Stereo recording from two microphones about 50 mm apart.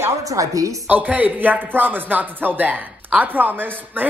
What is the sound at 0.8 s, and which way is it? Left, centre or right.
A woman's voice, right.